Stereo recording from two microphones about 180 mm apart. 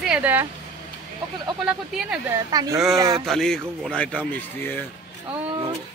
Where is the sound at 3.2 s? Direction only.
Centre (ahead or behind).